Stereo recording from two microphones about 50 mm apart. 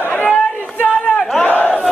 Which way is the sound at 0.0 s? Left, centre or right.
Left.